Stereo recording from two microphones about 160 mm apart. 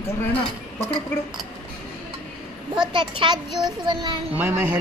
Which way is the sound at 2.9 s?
30° right (ahead or behind).